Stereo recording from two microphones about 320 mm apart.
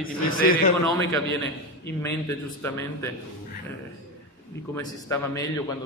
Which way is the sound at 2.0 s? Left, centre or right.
Centre.